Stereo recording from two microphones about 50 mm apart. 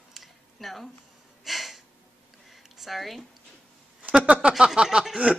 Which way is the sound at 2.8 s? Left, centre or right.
Centre.